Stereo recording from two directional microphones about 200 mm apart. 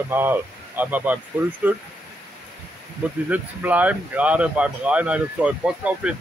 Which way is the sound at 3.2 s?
10° right (ahead or behind).